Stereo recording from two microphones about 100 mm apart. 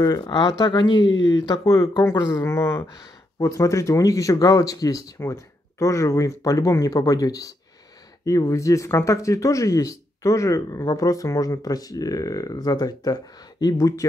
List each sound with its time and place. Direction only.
0.0 s speech: 40° left (ahead or behind)
1.6 s speech: 35° left (ahead or behind)